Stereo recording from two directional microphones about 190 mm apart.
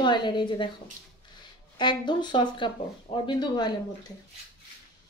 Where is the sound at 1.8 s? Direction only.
25° left (ahead or behind).